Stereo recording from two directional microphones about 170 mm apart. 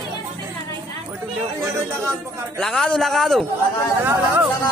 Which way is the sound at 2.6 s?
Centre (ahead or behind).